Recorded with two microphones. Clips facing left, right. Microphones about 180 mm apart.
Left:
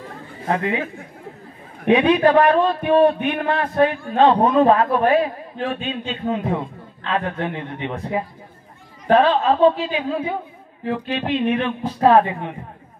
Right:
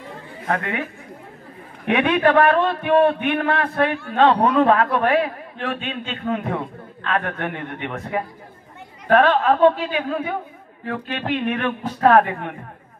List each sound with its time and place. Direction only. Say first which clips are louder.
0.5 s a man's voice: left 3 dB; 25° left (ahead or behind)
2.1 s a man's voice: left 1 dB; 25° left (ahead or behind)
5.8 s a man's voice: left 3 dB; 35° left (ahead or behind)
6.2 s a man's voice: left 1 dB; 25° left (ahead or behind)